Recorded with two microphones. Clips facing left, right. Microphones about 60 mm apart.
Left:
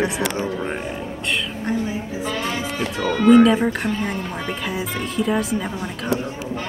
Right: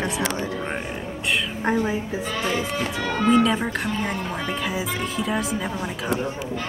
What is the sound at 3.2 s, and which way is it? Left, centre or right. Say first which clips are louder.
Speech: left 6 dB; centre.